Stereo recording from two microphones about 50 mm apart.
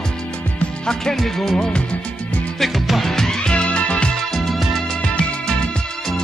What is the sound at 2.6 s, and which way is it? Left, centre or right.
Music, centre.